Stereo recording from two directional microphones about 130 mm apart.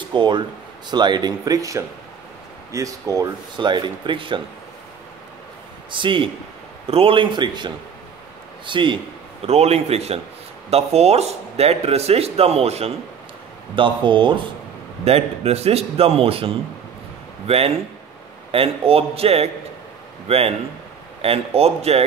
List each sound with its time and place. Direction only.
0.1 s speech: 35° right (ahead or behind)
5.9 s speech: 40° right (ahead or behind)
9.5 s a man's voice: 55° right (ahead or behind)
13.7 s speech: 40° right (ahead or behind)
15.0 s speech: 50° right (ahead or behind)